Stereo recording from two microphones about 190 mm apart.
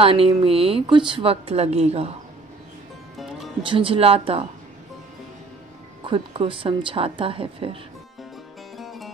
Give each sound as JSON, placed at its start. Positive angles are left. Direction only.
{"t": 0.0, "sound": "speech", "side_deg": -30}
{"t": 3.6, "sound": "speech", "side_deg": -25}
{"t": 6.0, "sound": "speech", "side_deg": -25}
{"t": 8.7, "sound": "music", "side_deg": 0}